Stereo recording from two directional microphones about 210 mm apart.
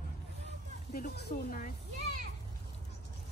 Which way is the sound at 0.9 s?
40° left (ahead or behind).